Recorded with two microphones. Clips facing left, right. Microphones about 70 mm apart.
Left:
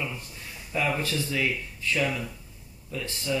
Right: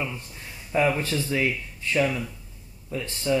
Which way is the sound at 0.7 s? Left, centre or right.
Right.